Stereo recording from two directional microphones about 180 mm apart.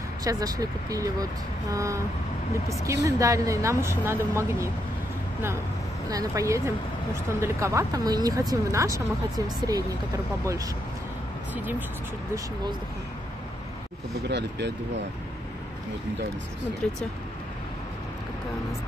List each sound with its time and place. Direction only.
0.2 s a woman's voice: 20° right (ahead or behind)
6.0 s a woman's voice: 20° right (ahead or behind)
16.8 s speech: 5° left (ahead or behind)